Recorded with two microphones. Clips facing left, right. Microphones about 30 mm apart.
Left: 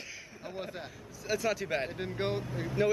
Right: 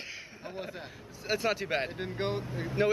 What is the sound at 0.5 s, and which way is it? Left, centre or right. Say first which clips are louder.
Speech: left 1 dB; centre.